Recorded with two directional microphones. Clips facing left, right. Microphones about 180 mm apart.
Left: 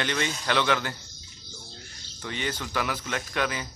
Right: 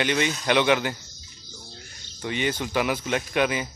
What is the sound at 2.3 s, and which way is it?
Speech, 15° right (ahead or behind).